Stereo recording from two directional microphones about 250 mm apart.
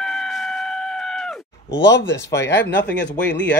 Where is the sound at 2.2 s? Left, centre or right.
Centre.